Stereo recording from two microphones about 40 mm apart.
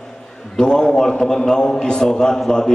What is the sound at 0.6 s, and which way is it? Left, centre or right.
A man's voice, centre.